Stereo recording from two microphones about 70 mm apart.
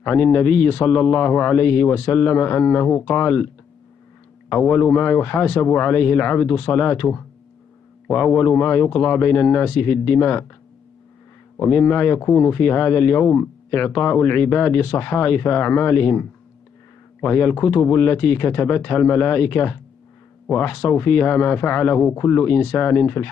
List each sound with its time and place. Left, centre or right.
0.0 s speech: left
4.5 s speech: left
11.5 s speech: left